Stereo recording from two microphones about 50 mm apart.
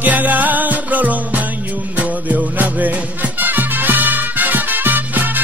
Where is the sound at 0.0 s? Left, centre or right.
Right.